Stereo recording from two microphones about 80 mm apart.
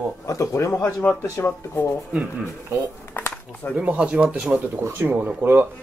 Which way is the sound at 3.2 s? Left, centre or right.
Left.